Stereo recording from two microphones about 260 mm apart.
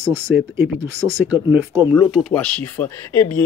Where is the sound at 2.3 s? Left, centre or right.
Centre.